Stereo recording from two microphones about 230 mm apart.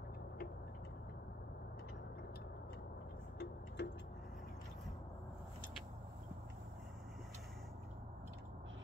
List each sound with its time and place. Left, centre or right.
3.3 s music: left